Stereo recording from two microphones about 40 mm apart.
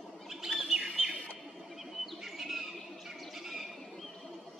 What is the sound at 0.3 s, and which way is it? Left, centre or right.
Bird, centre.